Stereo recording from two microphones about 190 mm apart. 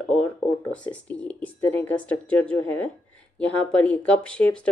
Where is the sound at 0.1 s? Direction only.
5° left (ahead or behind).